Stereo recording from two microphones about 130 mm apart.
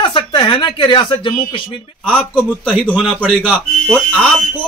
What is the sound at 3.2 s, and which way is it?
Speech, 10° right (ahead or behind).